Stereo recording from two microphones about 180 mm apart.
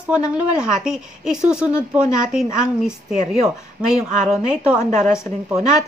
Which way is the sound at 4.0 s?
40° right (ahead or behind).